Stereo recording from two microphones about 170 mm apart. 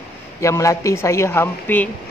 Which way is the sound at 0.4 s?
15° left (ahead or behind).